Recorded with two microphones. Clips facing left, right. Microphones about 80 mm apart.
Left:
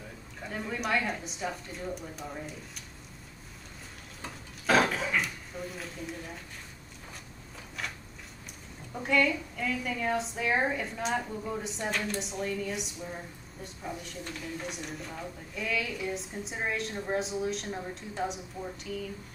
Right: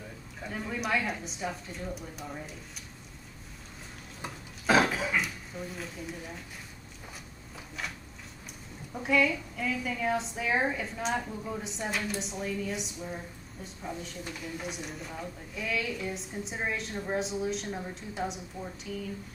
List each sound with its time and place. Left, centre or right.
0.4 s a woman's voice: centre
4.6 s a sound: centre
8.9 s a woman's voice: centre